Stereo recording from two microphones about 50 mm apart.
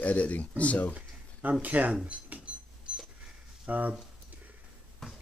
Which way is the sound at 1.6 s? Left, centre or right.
Right.